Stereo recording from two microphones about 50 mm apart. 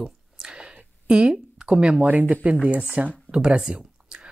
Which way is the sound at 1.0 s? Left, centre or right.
Right.